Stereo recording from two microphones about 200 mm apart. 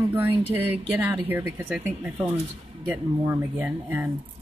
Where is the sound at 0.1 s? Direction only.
10° right (ahead or behind).